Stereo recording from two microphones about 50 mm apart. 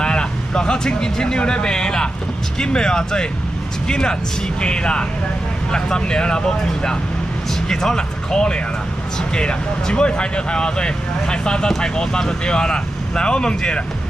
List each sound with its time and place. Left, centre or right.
0.0 s speech: centre